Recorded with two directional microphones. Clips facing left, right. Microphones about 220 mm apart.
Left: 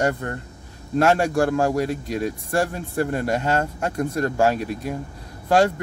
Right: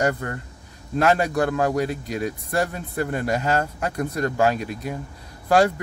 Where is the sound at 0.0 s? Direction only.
30° left (ahead or behind).